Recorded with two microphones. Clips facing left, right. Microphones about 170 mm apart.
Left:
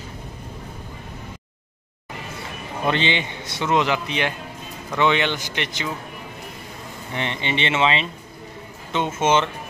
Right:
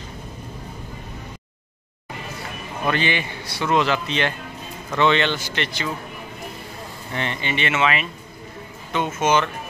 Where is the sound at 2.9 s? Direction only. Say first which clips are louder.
Left 1 dB; 20° left (ahead or behind).